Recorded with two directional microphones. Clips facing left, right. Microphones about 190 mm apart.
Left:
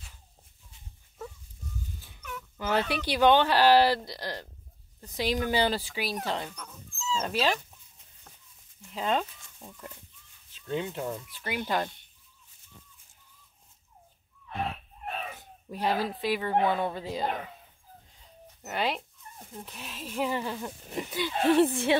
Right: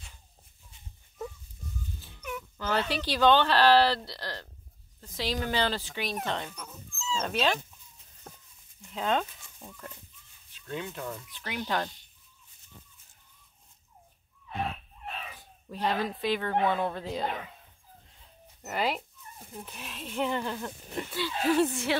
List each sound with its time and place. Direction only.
2.5 s speech: 15° left (ahead or behind)
8.3 s a sound: 45° right (ahead or behind)
8.9 s speech: centre (ahead or behind)
10.7 s speech: 25° left (ahead or behind)
11.3 s speech: 10° left (ahead or behind)
15.0 s a sound: 50° left (ahead or behind)
15.7 s speech: 10° left (ahead or behind)
18.6 s speech: centre (ahead or behind)
21.3 s speech: 25° left (ahead or behind)